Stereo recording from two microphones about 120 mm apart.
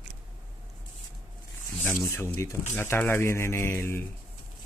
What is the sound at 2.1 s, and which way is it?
Speech, 20° left (ahead or behind).